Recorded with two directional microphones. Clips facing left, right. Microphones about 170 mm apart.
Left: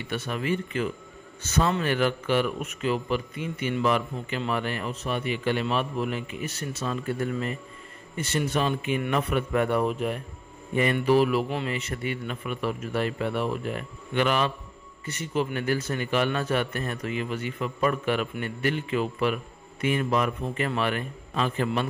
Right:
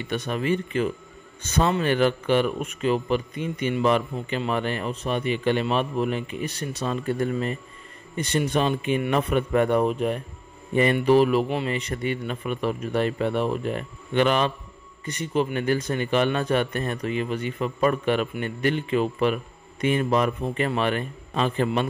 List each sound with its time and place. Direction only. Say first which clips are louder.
0.3 s speech: right 4 dB; 25° right (ahead or behind)